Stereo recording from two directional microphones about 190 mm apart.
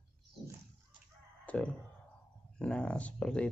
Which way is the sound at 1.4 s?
5° left (ahead or behind).